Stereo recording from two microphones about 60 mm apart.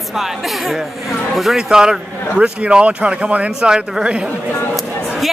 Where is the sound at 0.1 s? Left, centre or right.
Centre.